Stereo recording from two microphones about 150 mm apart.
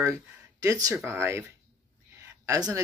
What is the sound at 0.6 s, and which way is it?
Speech, 25° right (ahead or behind).